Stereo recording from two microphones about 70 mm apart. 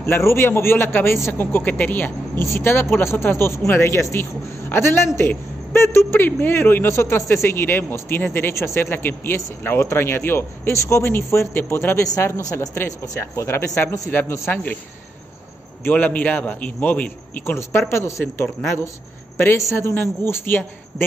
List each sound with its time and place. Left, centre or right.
0.0 s a man's voice: left
12.0 s speech: left
12.5 s speech: left
14.5 s a man's voice: left
15.8 s a man's voice: left
17.5 s speech: left